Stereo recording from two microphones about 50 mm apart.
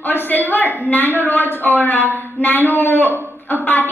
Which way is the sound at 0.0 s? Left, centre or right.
Left.